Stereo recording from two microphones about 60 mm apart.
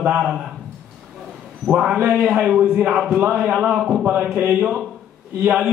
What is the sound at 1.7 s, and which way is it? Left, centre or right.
Speech, centre.